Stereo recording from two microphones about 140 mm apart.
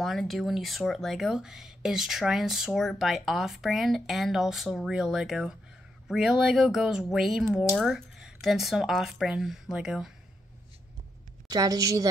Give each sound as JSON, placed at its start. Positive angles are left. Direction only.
{"t": 0.0, "sound": "speech", "side_deg": 0}
{"t": 11.5, "sound": "a woman's voice", "side_deg": -25}